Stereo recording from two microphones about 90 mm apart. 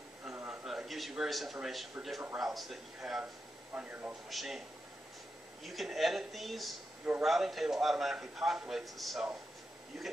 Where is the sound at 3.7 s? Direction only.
20° right (ahead or behind).